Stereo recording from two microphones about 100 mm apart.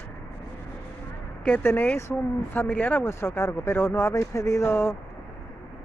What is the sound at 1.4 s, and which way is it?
Speech, 20° left (ahead or behind).